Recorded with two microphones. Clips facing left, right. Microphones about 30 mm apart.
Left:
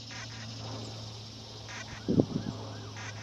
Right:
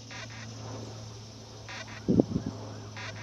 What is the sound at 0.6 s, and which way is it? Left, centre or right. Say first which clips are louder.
Duck: even; left.